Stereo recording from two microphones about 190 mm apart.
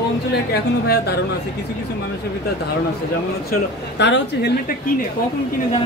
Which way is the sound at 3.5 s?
60° left (ahead or behind).